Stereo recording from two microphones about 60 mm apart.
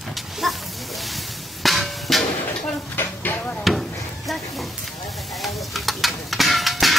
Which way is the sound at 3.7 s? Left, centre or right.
Centre.